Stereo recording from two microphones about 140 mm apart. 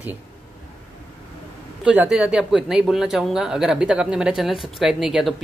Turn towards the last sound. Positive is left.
turn(degrees=-5)  # may be behind; listen again after turning